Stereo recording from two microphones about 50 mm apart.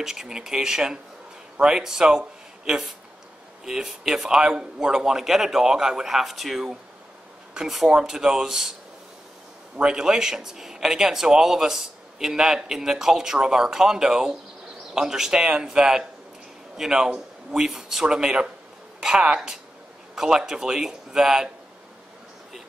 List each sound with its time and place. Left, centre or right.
0.0 s a man's voice: centre
9.8 s speech: centre